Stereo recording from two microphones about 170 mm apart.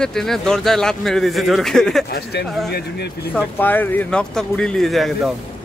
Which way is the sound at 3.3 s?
10° left (ahead or behind).